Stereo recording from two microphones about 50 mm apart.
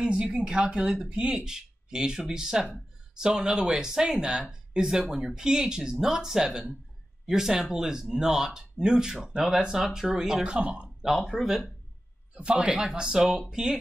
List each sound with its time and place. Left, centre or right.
0.0 s speech: right
11.1 s speech: centre
12.4 s speech: right